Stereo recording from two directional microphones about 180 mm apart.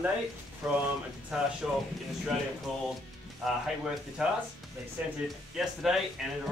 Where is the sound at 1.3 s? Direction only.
5° right (ahead or behind).